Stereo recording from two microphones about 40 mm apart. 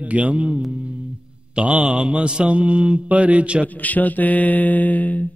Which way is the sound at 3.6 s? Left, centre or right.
Left.